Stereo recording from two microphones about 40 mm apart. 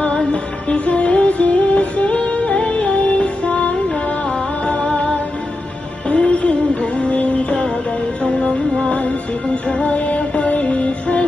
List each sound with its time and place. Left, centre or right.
0.1 s music: left